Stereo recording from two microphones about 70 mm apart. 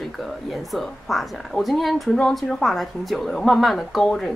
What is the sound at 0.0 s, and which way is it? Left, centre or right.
Speech, centre.